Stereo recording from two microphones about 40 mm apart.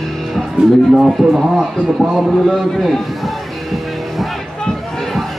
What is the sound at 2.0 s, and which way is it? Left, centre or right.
Speech, centre.